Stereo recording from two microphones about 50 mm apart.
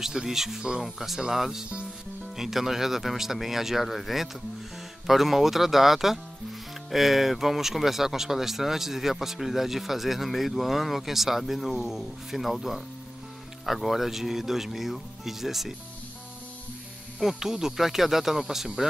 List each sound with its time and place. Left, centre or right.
0.0 s speech: centre
17.2 s speech: centre